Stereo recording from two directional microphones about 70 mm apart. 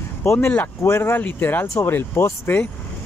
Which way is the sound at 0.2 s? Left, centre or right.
Left.